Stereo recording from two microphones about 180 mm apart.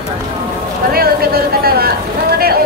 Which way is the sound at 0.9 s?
55° right (ahead or behind).